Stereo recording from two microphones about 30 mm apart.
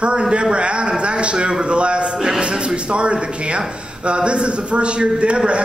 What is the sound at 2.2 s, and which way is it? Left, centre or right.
A man's voice, right.